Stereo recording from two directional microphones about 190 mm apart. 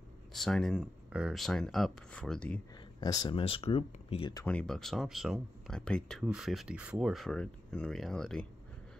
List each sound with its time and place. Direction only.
0.3 s speech: centre (ahead or behind)
3.0 s speech: 20° left (ahead or behind)
4.5 s speech: 5° left (ahead or behind)